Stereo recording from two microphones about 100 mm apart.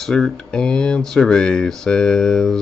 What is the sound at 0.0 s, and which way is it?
Speech, 5° left (ahead or behind).